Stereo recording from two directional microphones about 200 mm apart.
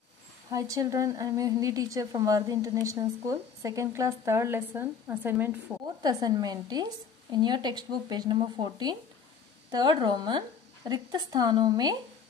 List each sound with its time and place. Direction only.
0.5 s a woman's voice: 15° right (ahead or behind)